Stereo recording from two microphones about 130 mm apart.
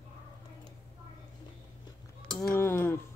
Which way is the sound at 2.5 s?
20° left (ahead or behind).